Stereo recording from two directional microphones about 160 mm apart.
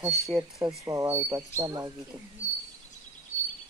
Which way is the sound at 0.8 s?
20° right (ahead or behind).